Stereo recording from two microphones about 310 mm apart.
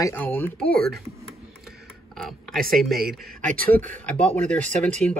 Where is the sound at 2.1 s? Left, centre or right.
Centre.